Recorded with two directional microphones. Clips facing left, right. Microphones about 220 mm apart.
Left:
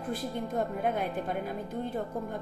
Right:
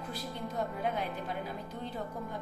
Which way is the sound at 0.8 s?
50° left (ahead or behind).